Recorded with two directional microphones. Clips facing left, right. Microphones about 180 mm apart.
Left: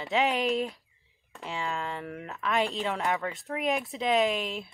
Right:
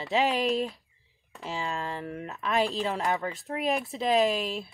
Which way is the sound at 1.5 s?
30° right (ahead or behind).